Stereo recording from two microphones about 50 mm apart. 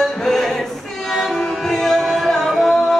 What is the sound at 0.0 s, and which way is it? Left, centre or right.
Music, centre.